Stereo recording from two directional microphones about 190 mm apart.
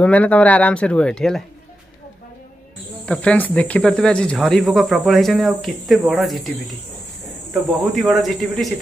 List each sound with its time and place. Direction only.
0.0 s speech: 5° left (ahead or behind)
3.1 s speech: 5° left (ahead or behind)
7.8 s speech: centre (ahead or behind)